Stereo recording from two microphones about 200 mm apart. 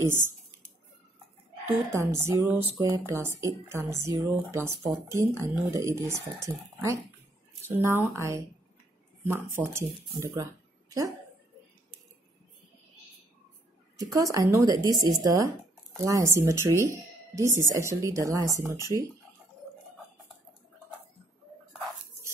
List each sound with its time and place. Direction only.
0.0 s speech: 10° right (ahead or behind)
1.9 s speech: 15° right (ahead or behind)
13.9 s speech: 15° right (ahead or behind)